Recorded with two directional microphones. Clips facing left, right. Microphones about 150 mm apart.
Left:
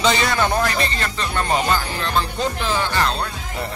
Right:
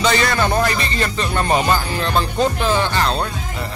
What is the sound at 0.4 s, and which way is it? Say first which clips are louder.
Speech: right 1 dB; 10° right (ahead or behind).